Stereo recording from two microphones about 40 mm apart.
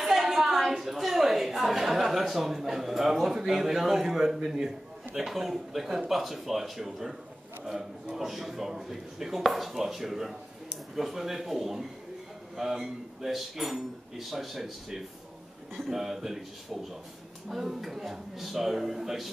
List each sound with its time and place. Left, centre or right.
0.0 s a woman's voice: centre